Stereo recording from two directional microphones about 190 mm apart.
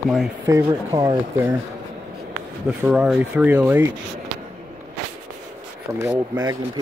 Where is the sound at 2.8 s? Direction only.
5° right (ahead or behind).